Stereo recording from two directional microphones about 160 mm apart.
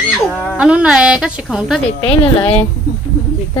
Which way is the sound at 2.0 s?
35° left (ahead or behind).